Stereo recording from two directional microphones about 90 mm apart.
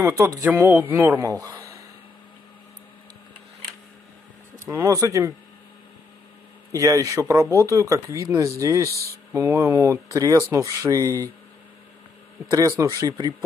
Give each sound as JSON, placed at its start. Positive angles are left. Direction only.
{"t": 0.6, "sound": "speech", "side_deg": -20}
{"t": 1.2, "sound": "speech", "side_deg": -40}
{"t": 4.6, "sound": "speech", "side_deg": -40}
{"t": 6.7, "sound": "speech", "side_deg": -40}
{"t": 12.4, "sound": "speech", "side_deg": -40}